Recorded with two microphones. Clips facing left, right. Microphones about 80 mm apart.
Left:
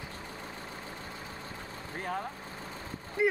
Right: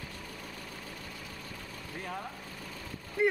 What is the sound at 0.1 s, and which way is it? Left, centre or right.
Vehicle, left.